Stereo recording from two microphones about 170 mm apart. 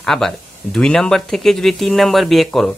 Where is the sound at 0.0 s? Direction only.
Centre (ahead or behind).